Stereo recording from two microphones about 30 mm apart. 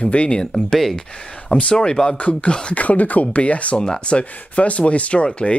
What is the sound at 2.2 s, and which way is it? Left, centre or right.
Speech, left.